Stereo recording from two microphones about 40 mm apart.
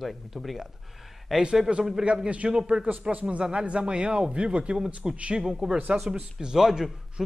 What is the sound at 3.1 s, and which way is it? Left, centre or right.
A man's voice, right.